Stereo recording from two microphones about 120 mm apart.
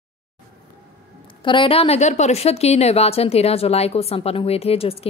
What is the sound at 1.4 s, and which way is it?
A woman's voice, 40° left (ahead or behind).